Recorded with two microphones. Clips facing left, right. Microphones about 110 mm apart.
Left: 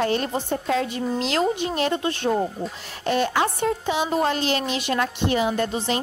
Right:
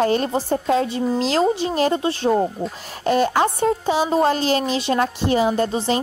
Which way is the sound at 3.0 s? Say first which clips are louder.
Right 4 dB; 40° right (ahead or behind).